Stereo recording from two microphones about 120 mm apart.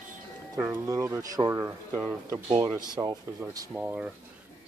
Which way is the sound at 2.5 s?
45° right (ahead or behind).